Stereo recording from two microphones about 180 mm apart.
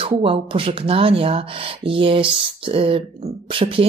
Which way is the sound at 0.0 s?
30° right (ahead or behind).